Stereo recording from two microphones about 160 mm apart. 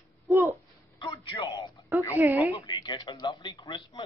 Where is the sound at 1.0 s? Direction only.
25° left (ahead or behind).